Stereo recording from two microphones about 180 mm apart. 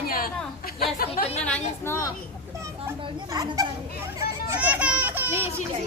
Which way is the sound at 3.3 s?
20° right (ahead or behind).